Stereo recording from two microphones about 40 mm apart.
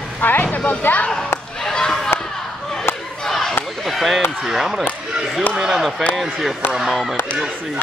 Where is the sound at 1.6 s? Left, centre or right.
Centre.